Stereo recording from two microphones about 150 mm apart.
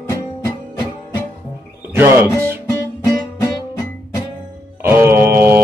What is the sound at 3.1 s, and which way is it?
Music, 25° left (ahead or behind).